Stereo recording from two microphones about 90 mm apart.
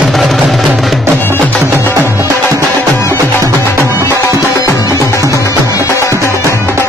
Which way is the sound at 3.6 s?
30° left (ahead or behind).